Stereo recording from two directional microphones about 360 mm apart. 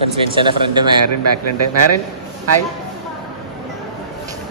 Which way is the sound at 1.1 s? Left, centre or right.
Right.